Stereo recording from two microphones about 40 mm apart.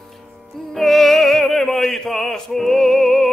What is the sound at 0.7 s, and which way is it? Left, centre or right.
Music, centre.